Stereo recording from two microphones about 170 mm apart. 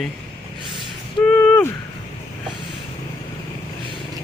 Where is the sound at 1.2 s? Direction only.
10° left (ahead or behind).